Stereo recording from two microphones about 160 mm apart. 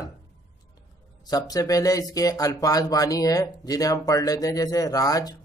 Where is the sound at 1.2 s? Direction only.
25° left (ahead or behind).